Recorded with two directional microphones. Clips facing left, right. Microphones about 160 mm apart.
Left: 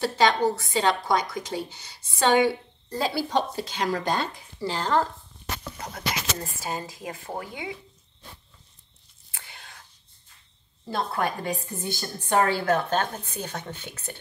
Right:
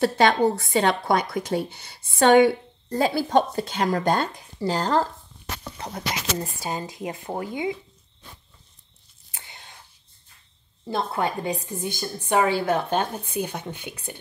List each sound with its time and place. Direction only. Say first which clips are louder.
0.0 s a woman's voice: right 3 dB; 55° right (ahead or behind); by 5.0 s 40° right (ahead or behind)
6.3 s speech: right 3 dB; 15° right (ahead or behind)
9.3 s whispering: right 1 dB; 25° right (ahead or behind)
10.9 s a woman's voice: right 2 dB; 20° right (ahead or behind)